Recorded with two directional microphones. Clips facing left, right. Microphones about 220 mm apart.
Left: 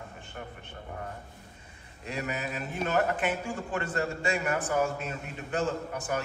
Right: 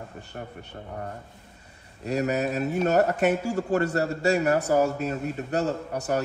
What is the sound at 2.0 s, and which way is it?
A man's voice, 40° right (ahead or behind).